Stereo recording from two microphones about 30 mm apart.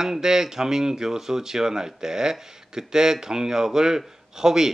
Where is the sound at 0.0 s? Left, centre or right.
Centre.